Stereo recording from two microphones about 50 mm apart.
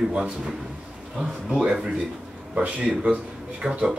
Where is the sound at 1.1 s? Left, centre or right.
Centre.